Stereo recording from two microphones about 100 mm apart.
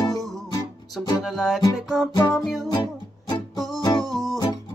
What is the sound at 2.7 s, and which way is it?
Music, 45° left (ahead or behind).